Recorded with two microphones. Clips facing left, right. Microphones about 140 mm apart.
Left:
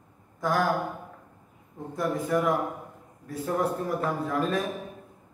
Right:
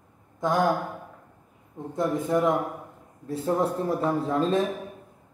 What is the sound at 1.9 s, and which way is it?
A man's voice, 20° right (ahead or behind).